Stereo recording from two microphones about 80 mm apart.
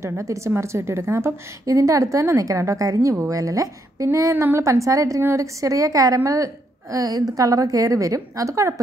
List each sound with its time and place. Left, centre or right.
0.0 s a woman's voice: right